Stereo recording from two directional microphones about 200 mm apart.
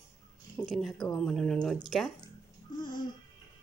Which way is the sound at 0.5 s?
5° left (ahead or behind).